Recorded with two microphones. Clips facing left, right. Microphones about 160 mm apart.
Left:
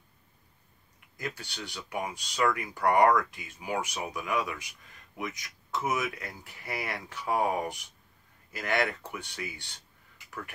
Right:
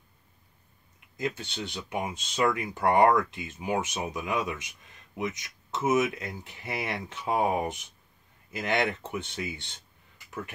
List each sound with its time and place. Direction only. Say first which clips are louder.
1.1 s speech: right 6 dB; 25° right (ahead or behind)